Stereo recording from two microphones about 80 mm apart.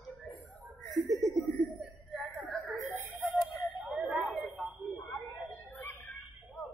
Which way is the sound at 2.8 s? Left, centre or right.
Right.